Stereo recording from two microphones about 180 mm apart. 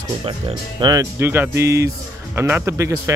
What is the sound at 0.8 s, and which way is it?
Speech, 20° right (ahead or behind).